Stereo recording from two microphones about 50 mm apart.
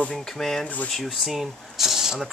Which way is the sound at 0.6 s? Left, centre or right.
Left.